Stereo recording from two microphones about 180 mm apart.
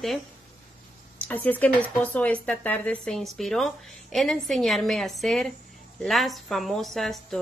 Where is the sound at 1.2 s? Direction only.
10° left (ahead or behind).